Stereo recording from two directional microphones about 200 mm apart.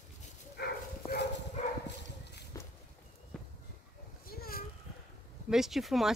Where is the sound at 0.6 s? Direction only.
55° left (ahead or behind).